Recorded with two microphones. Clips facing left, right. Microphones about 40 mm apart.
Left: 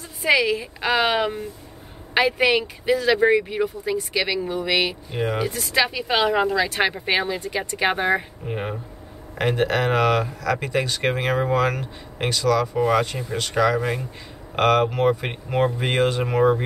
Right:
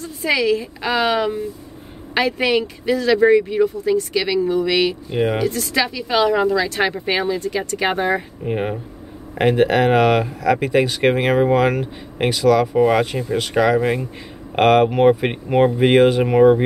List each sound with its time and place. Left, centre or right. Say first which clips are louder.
0.0 s speech: even; centre
5.1 s speech: right 6 dB; centre
5.4 s speech: right 2 dB; centre
5.9 s speech: right 3 dB; left
8.5 s speech: right 8 dB; centre